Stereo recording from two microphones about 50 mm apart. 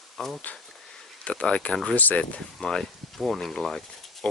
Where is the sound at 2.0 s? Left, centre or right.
Left.